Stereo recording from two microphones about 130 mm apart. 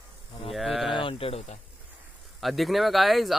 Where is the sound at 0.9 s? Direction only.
45° left (ahead or behind).